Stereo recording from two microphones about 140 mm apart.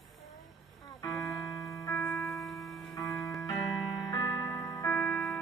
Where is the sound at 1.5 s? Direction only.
20° left (ahead or behind).